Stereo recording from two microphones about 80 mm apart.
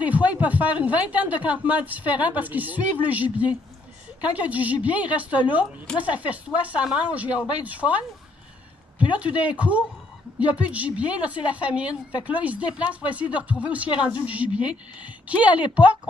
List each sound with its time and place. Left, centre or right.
0.0 s speech: centre
9.1 s speech: centre